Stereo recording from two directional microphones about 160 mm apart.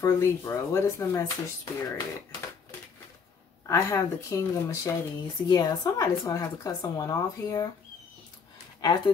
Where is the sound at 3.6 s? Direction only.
20° left (ahead or behind).